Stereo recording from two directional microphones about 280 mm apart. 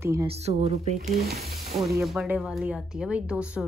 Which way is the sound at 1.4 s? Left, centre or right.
Centre.